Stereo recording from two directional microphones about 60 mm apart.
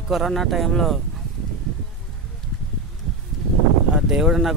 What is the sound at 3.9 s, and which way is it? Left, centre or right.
Speech, centre.